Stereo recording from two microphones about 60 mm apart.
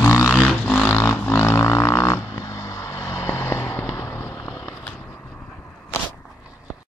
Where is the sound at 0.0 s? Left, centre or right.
Left.